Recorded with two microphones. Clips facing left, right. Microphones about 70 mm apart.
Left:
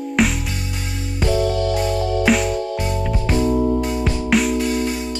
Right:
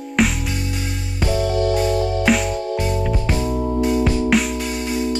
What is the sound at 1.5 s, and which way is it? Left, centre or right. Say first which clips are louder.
Music: right 1 dB; right.